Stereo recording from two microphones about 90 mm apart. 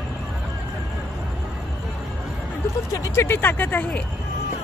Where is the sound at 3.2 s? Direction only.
25° left (ahead or behind).